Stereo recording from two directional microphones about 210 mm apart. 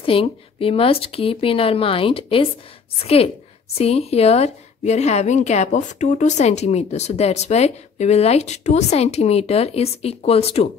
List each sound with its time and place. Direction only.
0.0 s a woman's voice: 25° left (ahead or behind)